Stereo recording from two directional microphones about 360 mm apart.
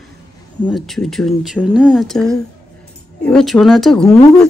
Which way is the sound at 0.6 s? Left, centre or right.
Centre.